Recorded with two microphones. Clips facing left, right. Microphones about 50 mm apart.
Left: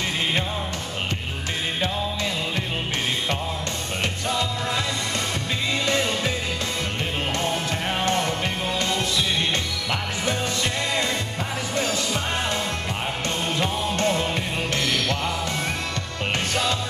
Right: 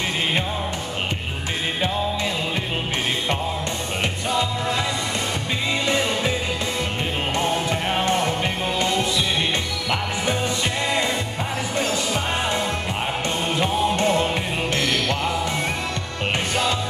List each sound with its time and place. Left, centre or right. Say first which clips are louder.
5.9 s music: right 2 dB; centre
7.3 s music: right 3 dB; centre
11.7 s music: right 1 dB; right
13.5 s music: right 6 dB; centre